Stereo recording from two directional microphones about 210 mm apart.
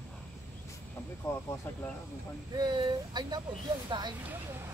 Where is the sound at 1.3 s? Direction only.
10° left (ahead or behind).